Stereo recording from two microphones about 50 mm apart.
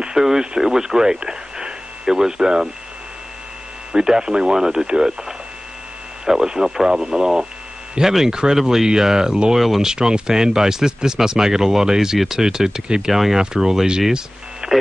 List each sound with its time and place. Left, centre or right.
0.0 s speech: centre
3.9 s speech: centre
6.2 s speech: centre